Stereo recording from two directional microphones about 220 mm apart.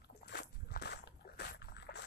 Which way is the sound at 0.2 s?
50° left (ahead or behind).